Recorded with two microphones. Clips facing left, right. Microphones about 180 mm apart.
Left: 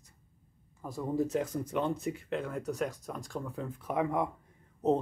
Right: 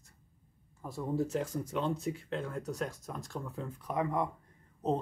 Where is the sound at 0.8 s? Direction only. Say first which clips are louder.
Left 2 dB; centre (ahead or behind).